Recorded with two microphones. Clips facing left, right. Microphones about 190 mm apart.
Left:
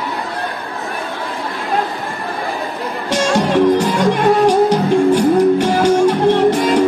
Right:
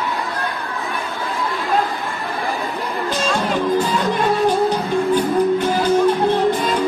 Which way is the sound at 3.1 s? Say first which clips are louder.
Left 7 dB; 80° left.